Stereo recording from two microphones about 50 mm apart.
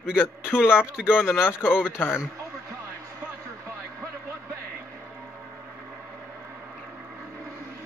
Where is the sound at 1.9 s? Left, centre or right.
Left.